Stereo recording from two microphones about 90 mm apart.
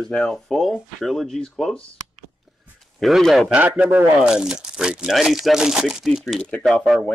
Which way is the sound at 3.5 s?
20° right (ahead or behind).